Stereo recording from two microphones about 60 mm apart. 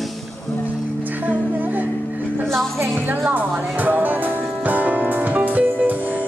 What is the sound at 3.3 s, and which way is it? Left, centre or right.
Music, right.